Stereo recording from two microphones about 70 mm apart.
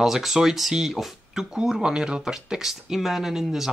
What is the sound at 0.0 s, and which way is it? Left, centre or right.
Speech, centre.